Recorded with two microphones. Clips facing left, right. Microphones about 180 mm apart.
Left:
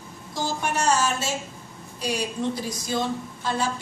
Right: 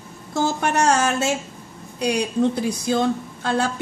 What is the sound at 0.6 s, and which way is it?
A woman's voice, 65° right (ahead or behind).